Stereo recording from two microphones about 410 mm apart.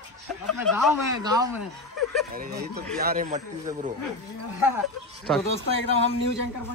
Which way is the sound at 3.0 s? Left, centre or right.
Centre.